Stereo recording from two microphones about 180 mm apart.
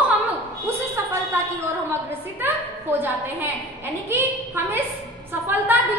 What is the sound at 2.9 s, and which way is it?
A woman's voice, 10° right (ahead or behind).